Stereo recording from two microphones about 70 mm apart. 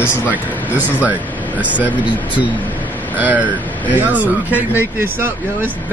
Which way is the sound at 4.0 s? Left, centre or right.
Right.